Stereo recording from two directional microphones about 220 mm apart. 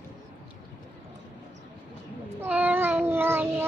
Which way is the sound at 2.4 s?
5° right (ahead or behind).